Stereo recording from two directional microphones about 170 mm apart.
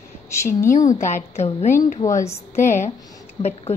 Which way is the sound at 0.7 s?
45° left (ahead or behind).